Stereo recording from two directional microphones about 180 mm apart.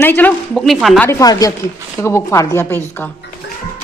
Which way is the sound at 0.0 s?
10° left (ahead or behind).